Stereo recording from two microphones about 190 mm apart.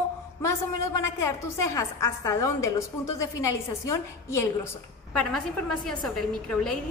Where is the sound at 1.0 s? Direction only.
15° left (ahead or behind).